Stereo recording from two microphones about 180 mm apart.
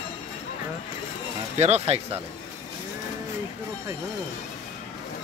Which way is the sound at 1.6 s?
35° right (ahead or behind).